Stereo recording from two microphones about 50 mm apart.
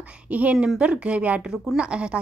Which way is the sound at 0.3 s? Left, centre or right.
Right.